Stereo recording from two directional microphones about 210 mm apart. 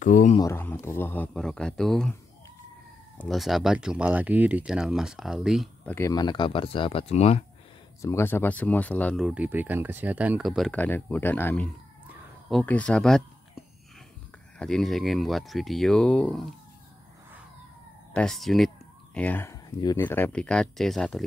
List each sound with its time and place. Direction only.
0.0 s speech: 35° left (ahead or behind)
0.4 s speech: 10° left (ahead or behind)
3.2 s speech: centre (ahead or behind)
5.9 s speech: 15° left (ahead or behind)
8.0 s speech: 10° left (ahead or behind)
18.1 s speech: centre (ahead or behind)